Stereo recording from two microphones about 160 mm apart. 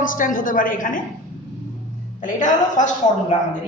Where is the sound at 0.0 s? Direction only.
55° left (ahead or behind).